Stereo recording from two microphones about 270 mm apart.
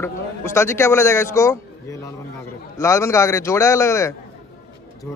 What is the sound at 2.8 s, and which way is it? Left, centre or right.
Speech, centre.